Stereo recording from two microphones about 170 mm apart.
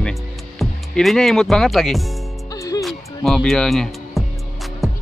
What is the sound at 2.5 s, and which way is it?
Music, 20° left (ahead or behind).